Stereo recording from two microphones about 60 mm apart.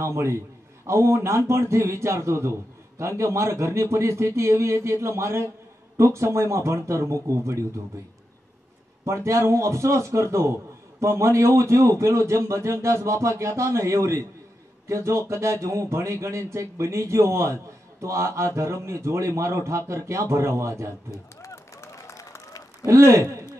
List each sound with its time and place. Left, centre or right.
0.0 s speech: right
9.0 s speech: right
21.1 s a sound: left
22.8 s speech: right